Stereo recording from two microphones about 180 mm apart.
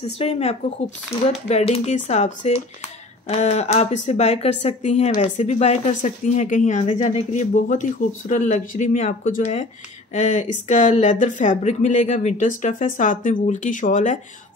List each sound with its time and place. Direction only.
0.2 s speech: 35° left (ahead or behind)